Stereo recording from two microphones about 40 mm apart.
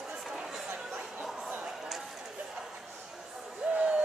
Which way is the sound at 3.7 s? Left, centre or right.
Right.